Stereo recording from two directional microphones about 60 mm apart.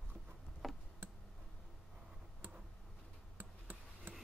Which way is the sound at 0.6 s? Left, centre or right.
Centre.